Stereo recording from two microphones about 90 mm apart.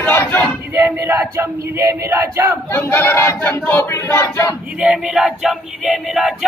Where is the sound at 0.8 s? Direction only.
25° right (ahead or behind).